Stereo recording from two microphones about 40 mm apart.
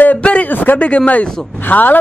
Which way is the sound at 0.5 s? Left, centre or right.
Left.